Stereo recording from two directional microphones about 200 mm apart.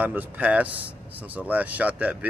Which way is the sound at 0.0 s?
10° right (ahead or behind).